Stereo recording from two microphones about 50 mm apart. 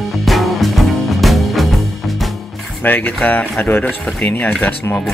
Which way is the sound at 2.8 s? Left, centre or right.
Left.